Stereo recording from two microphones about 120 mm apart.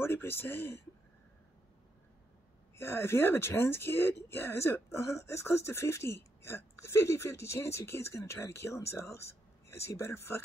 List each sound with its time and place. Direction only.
0.0 s speech: 20° left (ahead or behind)
2.7 s speech: 20° left (ahead or behind)